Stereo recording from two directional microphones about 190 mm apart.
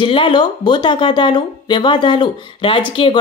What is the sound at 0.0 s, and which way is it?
Speech, 25° left (ahead or behind).